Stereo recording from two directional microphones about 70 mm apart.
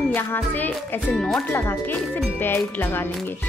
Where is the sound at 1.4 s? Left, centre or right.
Left.